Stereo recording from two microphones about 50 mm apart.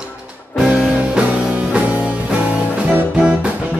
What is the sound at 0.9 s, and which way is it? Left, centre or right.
Music, right.